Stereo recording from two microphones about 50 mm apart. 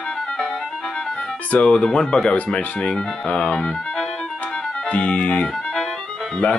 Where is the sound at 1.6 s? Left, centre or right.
Centre.